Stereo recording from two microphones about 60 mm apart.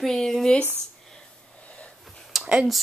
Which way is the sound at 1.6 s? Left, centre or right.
Left.